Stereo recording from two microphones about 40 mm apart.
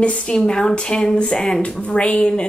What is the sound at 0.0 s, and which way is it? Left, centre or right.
Speech, left.